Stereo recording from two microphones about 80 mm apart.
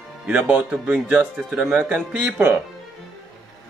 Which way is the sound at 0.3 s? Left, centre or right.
Right.